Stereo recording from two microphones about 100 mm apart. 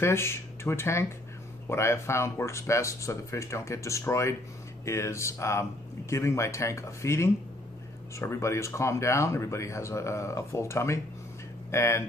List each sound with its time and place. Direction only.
0.0 s speech: 25° left (ahead or behind)